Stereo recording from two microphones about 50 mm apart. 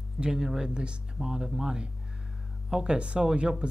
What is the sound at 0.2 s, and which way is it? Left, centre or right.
Speech, centre.